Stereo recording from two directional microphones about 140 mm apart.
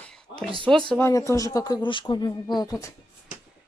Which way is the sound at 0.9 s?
20° left (ahead or behind).